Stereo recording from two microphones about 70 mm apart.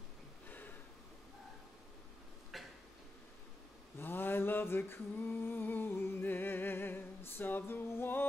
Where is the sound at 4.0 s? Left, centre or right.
Left.